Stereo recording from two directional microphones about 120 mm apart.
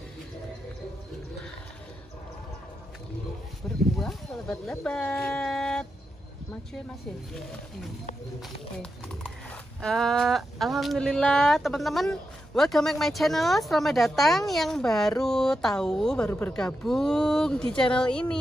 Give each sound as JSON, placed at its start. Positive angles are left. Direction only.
{"t": 3.9, "sound": "a sound", "side_deg": 5}
{"t": 9.8, "sound": "speech", "side_deg": 5}
{"t": 16.3, "sound": "speech", "side_deg": 15}
{"t": 16.5, "sound": "speech", "side_deg": 5}